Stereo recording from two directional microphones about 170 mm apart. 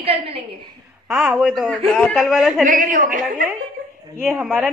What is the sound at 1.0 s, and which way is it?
A woman's voice, 5° right (ahead or behind).